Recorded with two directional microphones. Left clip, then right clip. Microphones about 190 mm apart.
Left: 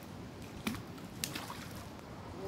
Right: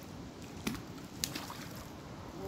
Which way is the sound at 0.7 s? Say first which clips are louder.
Even; 10° left (ahead or behind).